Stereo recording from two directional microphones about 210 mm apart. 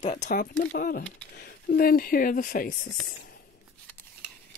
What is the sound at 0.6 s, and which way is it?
Speech, 50° left (ahead or behind).